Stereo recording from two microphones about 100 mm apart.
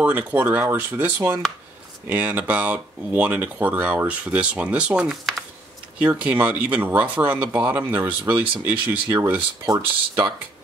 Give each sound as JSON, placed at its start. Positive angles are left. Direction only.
{"t": 0.0, "sound": "speech", "side_deg": -15}